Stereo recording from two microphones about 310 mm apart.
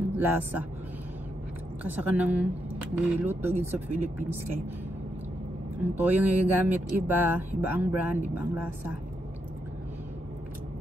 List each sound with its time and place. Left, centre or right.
0.1 s speech: centre
1.9 s speech: centre
5.8 s speech: centre